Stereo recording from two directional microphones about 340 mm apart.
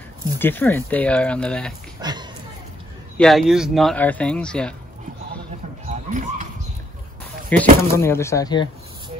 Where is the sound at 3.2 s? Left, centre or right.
Centre.